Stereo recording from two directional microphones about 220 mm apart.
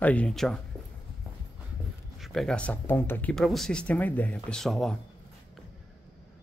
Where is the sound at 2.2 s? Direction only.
Centre (ahead or behind).